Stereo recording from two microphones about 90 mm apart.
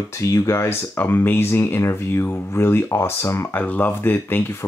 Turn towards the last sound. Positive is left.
turn(degrees=25)  # may be behind; listen again after turning